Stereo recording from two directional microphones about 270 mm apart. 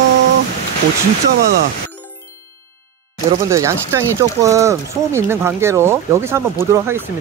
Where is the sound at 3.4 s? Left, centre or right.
Centre.